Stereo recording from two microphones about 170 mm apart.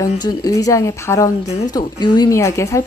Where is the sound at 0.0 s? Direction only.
20° left (ahead or behind).